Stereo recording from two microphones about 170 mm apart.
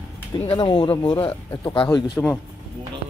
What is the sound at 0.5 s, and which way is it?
Speech, 30° left (ahead or behind).